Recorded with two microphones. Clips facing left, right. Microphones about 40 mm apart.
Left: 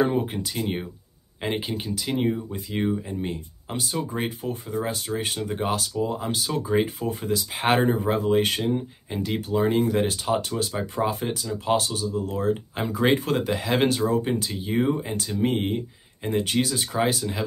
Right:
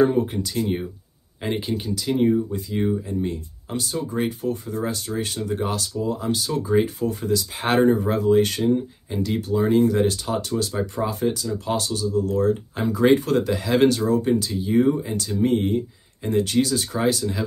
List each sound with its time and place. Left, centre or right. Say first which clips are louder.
0.0 s speech: right 4 dB; centre